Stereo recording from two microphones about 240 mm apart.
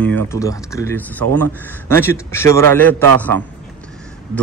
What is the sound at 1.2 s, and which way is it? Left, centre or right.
Speech, right.